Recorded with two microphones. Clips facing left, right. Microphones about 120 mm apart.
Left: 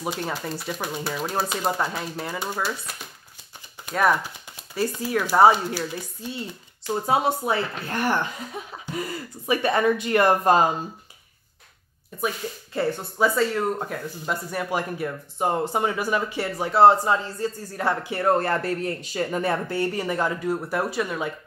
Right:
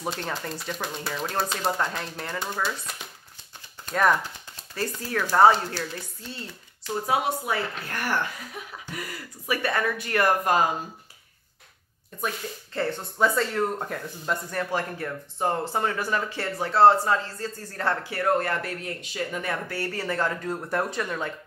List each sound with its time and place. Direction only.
0.0 s speech: 5° left (ahead or behind)
7.1 s speech: 30° left (ahead or behind)
12.1 s speech: 10° left (ahead or behind)
18.1 s speech: 30° left (ahead or behind); by 21.3 s 5° left (ahead or behind)